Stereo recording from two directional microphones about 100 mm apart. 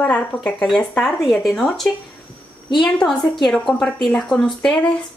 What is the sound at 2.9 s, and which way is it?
A woman's voice, 5° left (ahead or behind).